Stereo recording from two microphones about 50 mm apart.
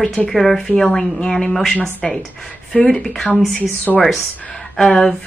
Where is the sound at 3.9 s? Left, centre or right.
Centre.